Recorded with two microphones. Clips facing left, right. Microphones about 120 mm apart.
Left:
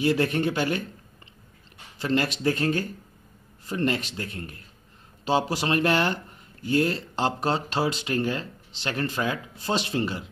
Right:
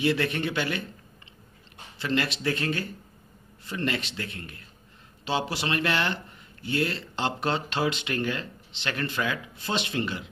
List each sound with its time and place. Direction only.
0.0 s speech: 40° left (ahead or behind)
2.0 s speech: 40° left (ahead or behind)